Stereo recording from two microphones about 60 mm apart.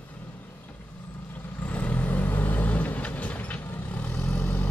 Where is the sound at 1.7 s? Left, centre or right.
Left.